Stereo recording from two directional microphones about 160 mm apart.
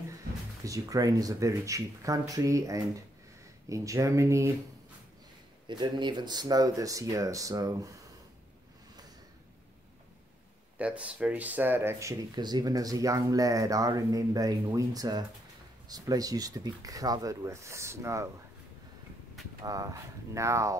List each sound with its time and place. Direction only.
0.7 s speech: 20° right (ahead or behind)
5.7 s speech: 30° right (ahead or behind)
10.8 s speech: 10° right (ahead or behind)
19.6 s speech: 20° right (ahead or behind)